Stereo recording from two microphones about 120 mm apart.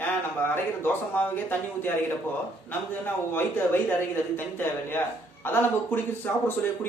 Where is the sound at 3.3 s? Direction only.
15° left (ahead or behind).